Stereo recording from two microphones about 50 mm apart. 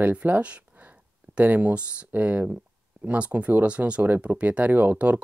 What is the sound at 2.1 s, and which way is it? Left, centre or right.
Speech, right.